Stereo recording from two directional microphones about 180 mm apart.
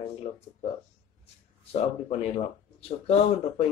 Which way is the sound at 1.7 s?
35° left (ahead or behind).